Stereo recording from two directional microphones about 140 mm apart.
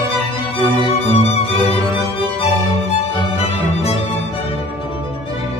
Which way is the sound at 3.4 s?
45° left (ahead or behind).